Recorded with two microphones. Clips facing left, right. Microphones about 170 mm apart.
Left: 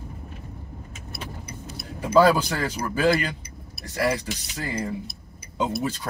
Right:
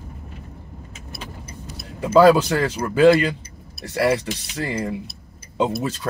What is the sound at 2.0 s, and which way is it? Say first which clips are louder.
A man's voice: right 5 dB; 70° right (ahead or behind).